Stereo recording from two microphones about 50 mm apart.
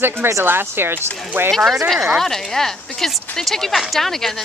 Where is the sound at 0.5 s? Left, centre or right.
Right.